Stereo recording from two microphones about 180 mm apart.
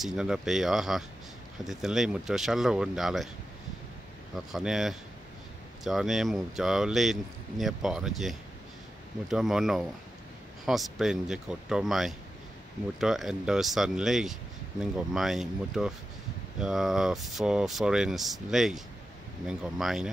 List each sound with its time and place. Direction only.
0.0 s speech: centre (ahead or behind)
4.5 s speech: centre (ahead or behind)